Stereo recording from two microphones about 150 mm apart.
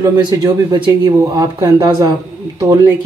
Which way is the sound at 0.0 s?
25° right (ahead or behind).